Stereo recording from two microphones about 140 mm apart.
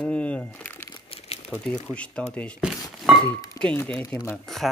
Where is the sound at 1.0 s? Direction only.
45° left (ahead or behind).